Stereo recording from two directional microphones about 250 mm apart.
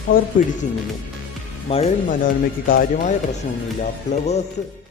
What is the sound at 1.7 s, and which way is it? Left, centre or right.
Speech, left.